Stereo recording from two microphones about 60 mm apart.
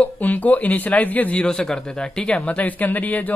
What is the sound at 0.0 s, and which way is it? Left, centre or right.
Speech, left.